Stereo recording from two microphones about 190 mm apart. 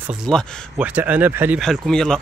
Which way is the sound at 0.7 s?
10° right (ahead or behind).